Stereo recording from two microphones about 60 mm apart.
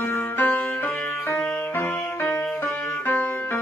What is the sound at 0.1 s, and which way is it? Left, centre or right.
Music, left.